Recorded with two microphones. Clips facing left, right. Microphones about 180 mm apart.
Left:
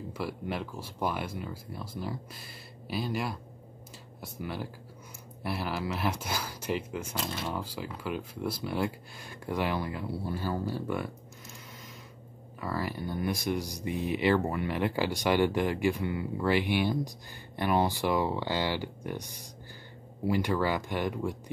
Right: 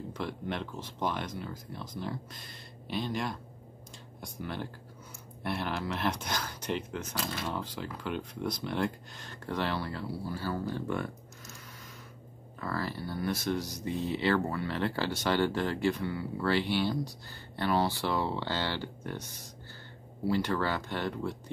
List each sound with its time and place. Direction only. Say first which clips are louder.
0.1 s speech: left 2 dB; 5° left (ahead or behind)
12.5 s speech: left 1 dB; 10° left (ahead or behind)